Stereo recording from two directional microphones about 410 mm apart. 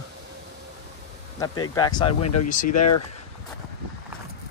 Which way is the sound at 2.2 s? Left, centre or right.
Left.